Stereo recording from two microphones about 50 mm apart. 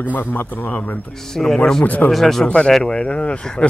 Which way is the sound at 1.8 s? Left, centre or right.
Left.